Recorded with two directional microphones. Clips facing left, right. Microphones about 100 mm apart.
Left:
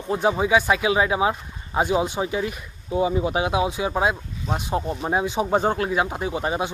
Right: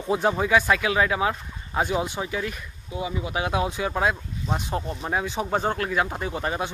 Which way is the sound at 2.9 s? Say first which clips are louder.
Left 8 dB; 35° left (ahead or behind).